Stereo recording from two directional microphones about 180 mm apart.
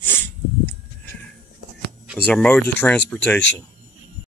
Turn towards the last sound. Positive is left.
turn(degrees=5)  # may be behind; listen again after turning